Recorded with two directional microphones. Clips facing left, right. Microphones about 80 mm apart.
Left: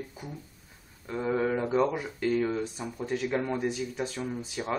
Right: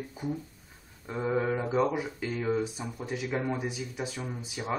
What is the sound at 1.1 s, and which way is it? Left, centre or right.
Speech, centre.